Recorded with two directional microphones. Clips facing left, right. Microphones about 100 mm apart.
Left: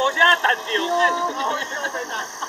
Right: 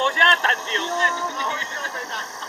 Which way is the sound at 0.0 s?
25° left (ahead or behind).